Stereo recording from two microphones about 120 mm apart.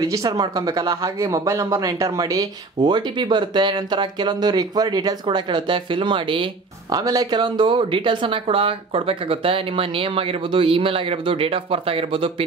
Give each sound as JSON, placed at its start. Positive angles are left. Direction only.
{"t": 0.0, "sound": "speech", "side_deg": -30}